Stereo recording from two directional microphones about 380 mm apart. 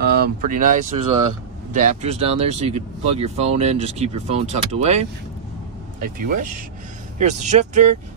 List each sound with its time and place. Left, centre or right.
0.0 s speech: right